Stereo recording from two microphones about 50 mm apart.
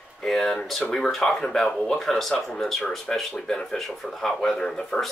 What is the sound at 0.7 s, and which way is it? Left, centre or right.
Speech, centre.